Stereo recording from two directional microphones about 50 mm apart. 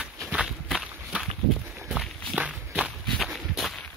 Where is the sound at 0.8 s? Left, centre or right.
Centre.